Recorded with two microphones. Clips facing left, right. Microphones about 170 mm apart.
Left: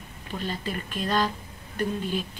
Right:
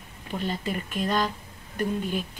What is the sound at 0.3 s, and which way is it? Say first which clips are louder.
Speech: right 2 dB; 15° right (ahead or behind).